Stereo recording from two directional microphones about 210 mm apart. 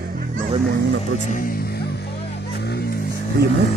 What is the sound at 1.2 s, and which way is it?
Speech, 40° left (ahead or behind).